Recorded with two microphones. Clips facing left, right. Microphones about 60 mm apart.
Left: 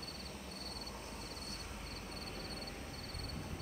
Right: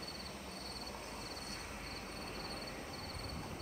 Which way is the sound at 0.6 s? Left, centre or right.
Right.